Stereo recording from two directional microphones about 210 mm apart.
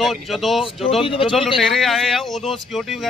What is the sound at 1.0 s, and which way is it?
Speech, 25° left (ahead or behind).